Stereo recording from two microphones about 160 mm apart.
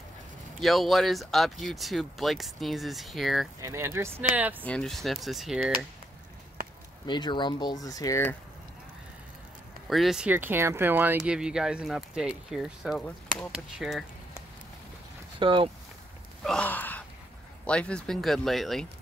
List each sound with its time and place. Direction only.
0.6 s speech: centre (ahead or behind)
3.6 s speech: 15° right (ahead or behind)
4.6 s speech: 5° left (ahead or behind)
7.1 s speech: 30° left (ahead or behind)
9.8 s speech: centre (ahead or behind)
13.0 s speech: 5° left (ahead or behind)
15.3 s speech: 30° right (ahead or behind)
16.4 s a sound: 10° left (ahead or behind)
17.6 s speech: 5° left (ahead or behind)